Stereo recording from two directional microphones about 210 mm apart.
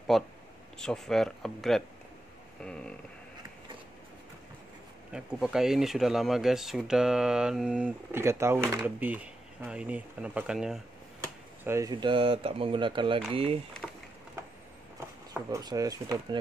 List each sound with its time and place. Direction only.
0.1 s speech: centre (ahead or behind)
5.1 s speech: 5° right (ahead or behind)
11.6 s speech: 15° right (ahead or behind)
13.8 s a sound: centre (ahead or behind)
15.3 s speech: 15° right (ahead or behind)